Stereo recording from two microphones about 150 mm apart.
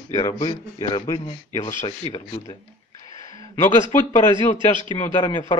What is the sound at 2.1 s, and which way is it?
Speech, 30° left (ahead or behind).